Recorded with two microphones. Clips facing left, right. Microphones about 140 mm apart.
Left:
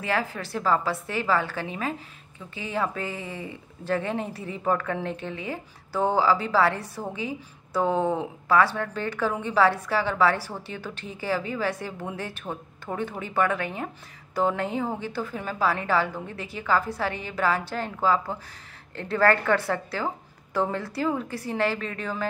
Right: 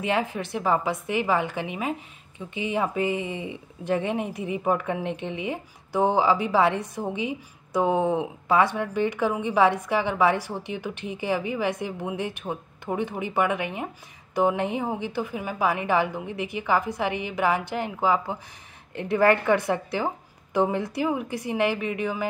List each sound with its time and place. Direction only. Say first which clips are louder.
0.0 s a woman's voice: right 2 dB; 20° right (ahead or behind)